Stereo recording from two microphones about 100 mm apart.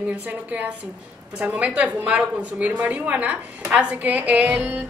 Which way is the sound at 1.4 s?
15° right (ahead or behind).